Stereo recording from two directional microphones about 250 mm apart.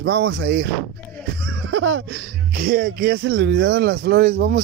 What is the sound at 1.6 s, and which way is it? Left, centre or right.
Laughter, right.